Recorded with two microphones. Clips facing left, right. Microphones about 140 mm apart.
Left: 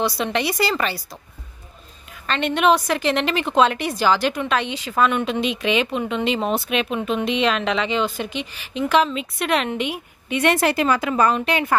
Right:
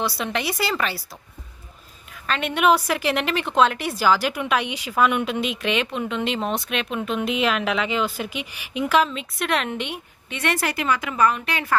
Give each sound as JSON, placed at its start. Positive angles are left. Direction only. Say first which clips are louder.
{"t": 0.0, "sound": "a woman's voice", "louder": "left 3 dB", "side_deg": 0}
{"t": 2.2, "sound": "a woman's voice", "louder": "left 2 dB", "side_deg": -5}
{"t": 10.3, "sound": "a woman's voice", "louder": "left 6 dB", "side_deg": 20}